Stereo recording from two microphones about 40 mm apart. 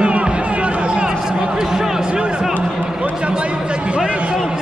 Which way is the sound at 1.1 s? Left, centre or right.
Centre.